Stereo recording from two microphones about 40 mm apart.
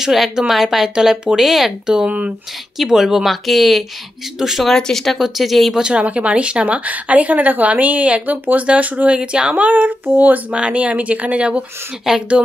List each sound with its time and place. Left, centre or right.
0.0 s a woman's voice: centre
2.0 s speech: right
2.8 s a woman's voice: centre
3.3 s a woman's voice: centre
4.6 s speech: centre
5.2 s speech: centre
5.8 s a woman's voice: right
10.5 s speech: right
12.1 s a woman's voice: centre